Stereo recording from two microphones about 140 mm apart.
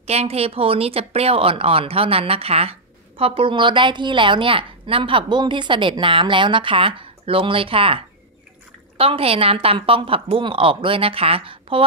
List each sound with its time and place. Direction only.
0.0 s speech: 50° right (ahead or behind)